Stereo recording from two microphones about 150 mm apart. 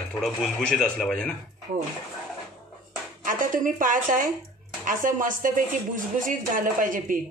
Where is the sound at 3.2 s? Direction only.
60° right (ahead or behind).